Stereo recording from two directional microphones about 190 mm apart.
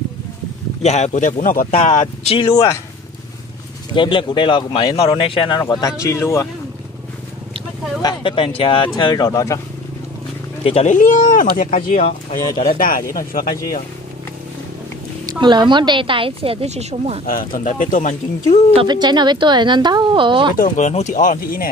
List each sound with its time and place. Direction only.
0.8 s speech: 35° left (ahead or behind)
2.3 s speech: 25° left (ahead or behind)
3.9 s speech: 25° left (ahead or behind)
8.0 s speech: 25° left (ahead or behind)
10.6 s speech: 30° left (ahead or behind)
11.0 s speech: 45° left (ahead or behind)
15.2 s a woman's voice: 25° right (ahead or behind)
17.3 s speech: 50° left (ahead or behind)
18.8 s a woman's voice: 25° right (ahead or behind)
20.5 s speech: 40° left (ahead or behind)